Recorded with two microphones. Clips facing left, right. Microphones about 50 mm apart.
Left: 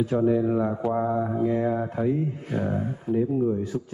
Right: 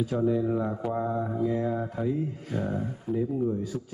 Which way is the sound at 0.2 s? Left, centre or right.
Left.